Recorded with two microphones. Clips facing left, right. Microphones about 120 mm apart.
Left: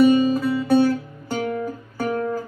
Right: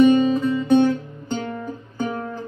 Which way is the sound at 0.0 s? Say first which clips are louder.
Right 1 dB; 5° left (ahead or behind).